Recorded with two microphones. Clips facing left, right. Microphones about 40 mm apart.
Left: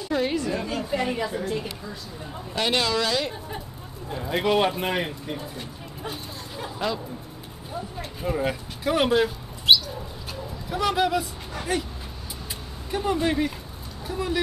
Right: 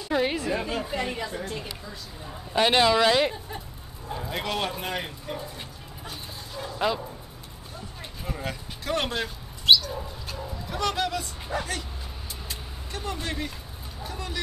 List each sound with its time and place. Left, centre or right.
0.0 s a woman's voice: centre
0.9 s a woman's voice: centre
2.5 s speech: right
4.1 s speech: centre
6.0 s a sound: centre
8.2 s bird: centre
10.3 s a sound: centre
12.9 s speech: centre